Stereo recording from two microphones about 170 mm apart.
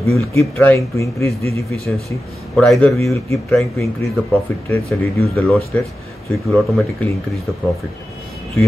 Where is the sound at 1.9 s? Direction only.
Centre (ahead or behind).